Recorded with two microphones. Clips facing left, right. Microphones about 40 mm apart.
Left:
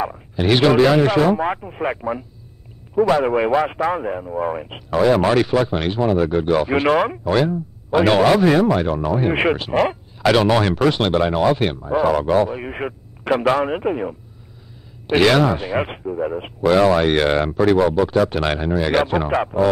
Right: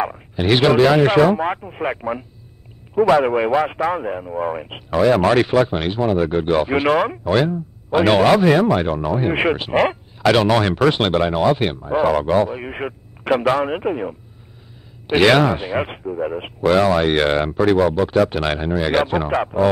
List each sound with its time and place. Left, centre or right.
0.4 s a man's voice: centre
2.0 s speech: right
3.3 s a man's voice: centre; by 5.6 s right
5.7 s a man's voice: centre; by 6.7 s right
6.7 s a man's voice: centre
8.5 s speech: right
8.9 s speech: centre
9.6 s speech: right
10.1 s a man's voice: centre
15.0 s speech: centre
15.7 s speech: centre
16.6 s a man's voice: centre